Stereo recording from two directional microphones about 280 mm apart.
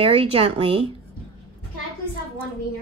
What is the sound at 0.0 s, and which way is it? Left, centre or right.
Speech, centre.